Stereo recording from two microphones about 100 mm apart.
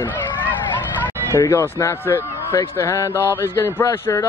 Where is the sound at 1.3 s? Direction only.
25° left (ahead or behind).